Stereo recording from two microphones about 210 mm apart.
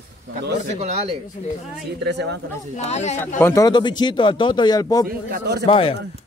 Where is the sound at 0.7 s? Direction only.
30° right (ahead or behind).